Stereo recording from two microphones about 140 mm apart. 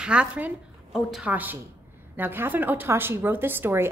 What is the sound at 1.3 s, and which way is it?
A woman's voice, 15° right (ahead or behind).